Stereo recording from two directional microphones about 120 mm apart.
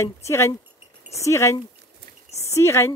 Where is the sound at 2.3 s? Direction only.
25° left (ahead or behind).